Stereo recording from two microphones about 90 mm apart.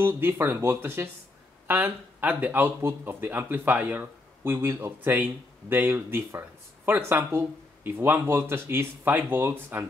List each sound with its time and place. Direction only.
0.0 s speech: 25° right (ahead or behind)